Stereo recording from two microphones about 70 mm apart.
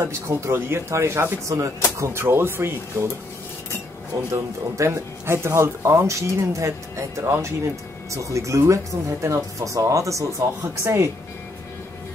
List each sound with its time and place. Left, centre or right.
0.0 s speech: right
4.1 s speech: right